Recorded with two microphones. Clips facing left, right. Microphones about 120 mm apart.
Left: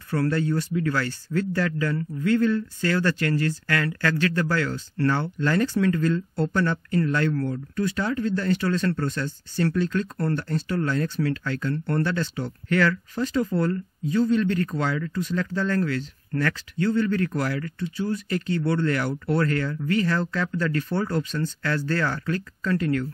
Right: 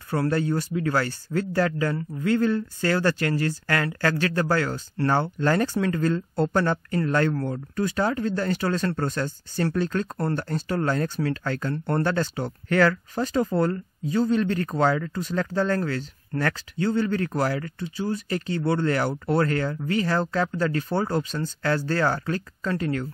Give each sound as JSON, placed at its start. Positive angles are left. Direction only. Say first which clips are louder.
{"t": 0.1, "sound": "speech", "louder": "even", "side_deg": -30}